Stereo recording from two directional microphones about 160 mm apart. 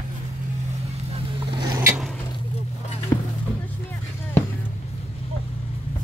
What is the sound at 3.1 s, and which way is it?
Music, 20° left (ahead or behind).